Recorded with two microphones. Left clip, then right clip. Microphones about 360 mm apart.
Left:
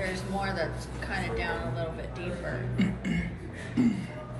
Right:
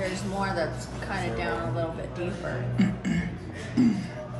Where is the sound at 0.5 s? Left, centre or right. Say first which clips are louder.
Right 3 dB; centre.